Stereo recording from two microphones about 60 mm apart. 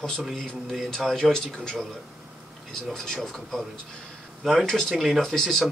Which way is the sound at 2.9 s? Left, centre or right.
Centre.